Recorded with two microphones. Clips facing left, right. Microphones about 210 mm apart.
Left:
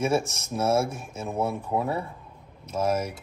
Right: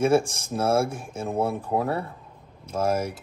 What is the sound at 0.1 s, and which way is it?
Speech, 30° right (ahead or behind).